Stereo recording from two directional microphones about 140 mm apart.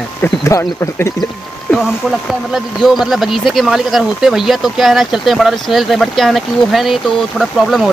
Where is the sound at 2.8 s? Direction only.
Centre (ahead or behind).